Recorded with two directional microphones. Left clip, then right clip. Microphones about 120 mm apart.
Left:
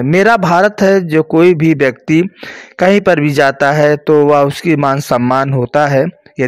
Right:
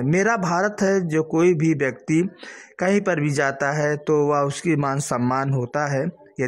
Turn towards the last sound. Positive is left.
turn(degrees=20)  # may be behind; listen again after turning